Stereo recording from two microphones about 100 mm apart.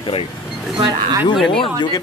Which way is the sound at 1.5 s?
60° left (ahead or behind).